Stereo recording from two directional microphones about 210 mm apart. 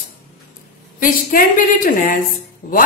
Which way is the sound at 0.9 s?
40° left (ahead or behind).